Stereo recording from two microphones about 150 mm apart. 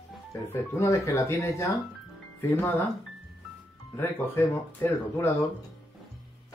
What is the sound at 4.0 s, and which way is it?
Speech, 15° left (ahead or behind).